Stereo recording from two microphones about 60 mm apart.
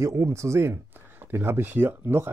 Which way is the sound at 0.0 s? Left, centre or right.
Right.